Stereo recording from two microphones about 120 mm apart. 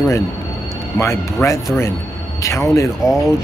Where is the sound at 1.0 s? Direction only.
25° left (ahead or behind).